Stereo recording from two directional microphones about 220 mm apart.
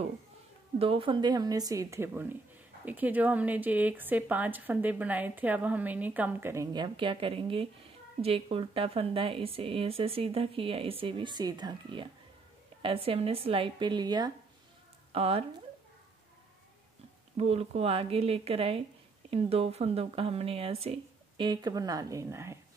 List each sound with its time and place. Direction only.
0.7 s speech: 25° right (ahead or behind)
17.4 s speech: 30° right (ahead or behind); by 22.6 s 10° right (ahead or behind)